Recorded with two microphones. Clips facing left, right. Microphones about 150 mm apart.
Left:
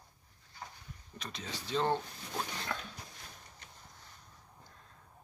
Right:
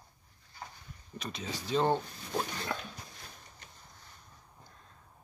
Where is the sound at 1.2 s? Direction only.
10° right (ahead or behind).